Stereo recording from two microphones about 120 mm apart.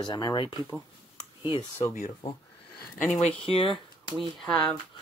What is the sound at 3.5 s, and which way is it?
Speech, 50° left (ahead or behind).